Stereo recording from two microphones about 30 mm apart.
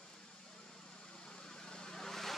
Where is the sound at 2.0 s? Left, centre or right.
Centre.